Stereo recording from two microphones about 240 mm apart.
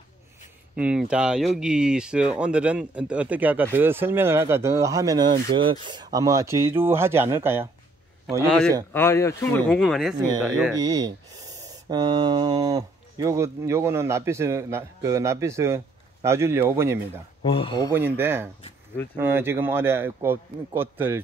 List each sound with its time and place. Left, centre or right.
0.7 s speech: centre
8.9 s speech: centre
10.8 s speech: centre
17.4 s speech: left
17.9 s speech: centre